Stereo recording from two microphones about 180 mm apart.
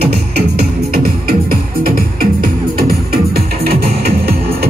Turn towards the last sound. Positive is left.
turn(degrees=-60)  # may be behind; listen again after turning